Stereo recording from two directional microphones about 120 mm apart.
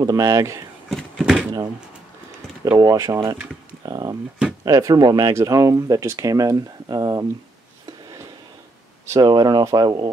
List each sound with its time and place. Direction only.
0.0 s speech: 30° right (ahead or behind)
0.8 s a sound: centre (ahead or behind)
2.8 s speech: 30° right (ahead or behind)
9.0 s speech: 25° right (ahead or behind)
9.3 s speech: 35° right (ahead or behind)